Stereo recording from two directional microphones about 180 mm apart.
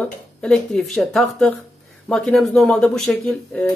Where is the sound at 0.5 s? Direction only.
5° left (ahead or behind).